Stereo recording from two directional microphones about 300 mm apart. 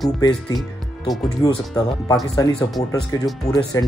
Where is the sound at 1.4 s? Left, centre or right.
Centre.